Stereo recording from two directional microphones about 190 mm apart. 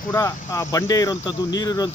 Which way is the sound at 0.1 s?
15° left (ahead or behind).